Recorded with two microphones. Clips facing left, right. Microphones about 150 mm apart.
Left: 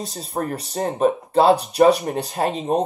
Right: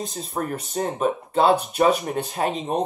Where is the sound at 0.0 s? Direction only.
40° left (ahead or behind).